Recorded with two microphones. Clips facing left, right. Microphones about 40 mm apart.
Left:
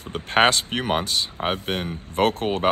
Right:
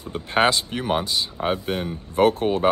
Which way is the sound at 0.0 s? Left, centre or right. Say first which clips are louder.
Left 1 dB; left.